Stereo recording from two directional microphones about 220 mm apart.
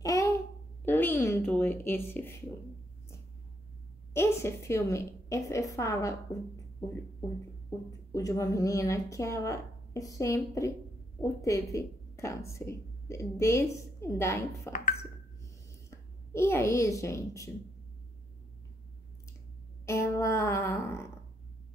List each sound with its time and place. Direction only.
0.0 s babbling: 15° left (ahead or behind)
0.8 s a woman's voice: 10° left (ahead or behind)
4.1 s a woman's voice: 10° left (ahead or behind)
8.1 s a woman's voice: 15° left (ahead or behind)
15.9 s a child's voice: 10° left (ahead or behind)
19.9 s a woman's voice: 10° left (ahead or behind)